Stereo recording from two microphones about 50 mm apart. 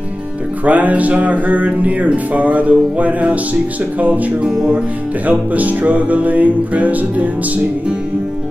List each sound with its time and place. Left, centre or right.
0.7 s music: right
5.2 s music: right